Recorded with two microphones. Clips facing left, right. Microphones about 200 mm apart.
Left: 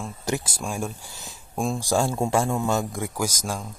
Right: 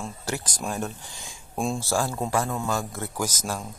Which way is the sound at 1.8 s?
20° left (ahead or behind).